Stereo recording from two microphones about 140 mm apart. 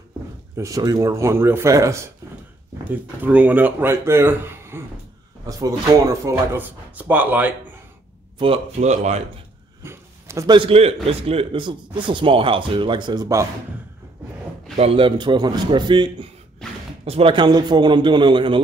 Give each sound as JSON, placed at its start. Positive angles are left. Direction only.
{"t": 0.6, "sound": "speech", "side_deg": -25}
{"t": 2.9, "sound": "speech", "side_deg": -10}
{"t": 8.8, "sound": "speech", "side_deg": -55}
{"t": 9.8, "sound": "a sound", "side_deg": -20}
{"t": 10.5, "sound": "a man's voice", "side_deg": -40}
{"t": 14.8, "sound": "speech", "side_deg": -40}
{"t": 16.6, "sound": "a sound", "side_deg": 5}
{"t": 17.0, "sound": "speech", "side_deg": -45}